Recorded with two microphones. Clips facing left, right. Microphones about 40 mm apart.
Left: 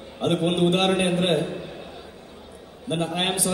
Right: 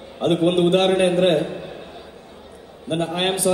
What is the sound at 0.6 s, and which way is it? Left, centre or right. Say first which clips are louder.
Speech: right 4 dB; right.